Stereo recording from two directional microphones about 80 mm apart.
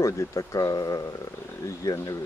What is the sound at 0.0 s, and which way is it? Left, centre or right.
Speech, left.